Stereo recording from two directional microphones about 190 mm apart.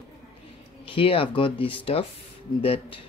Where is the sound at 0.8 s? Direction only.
30° left (ahead or behind).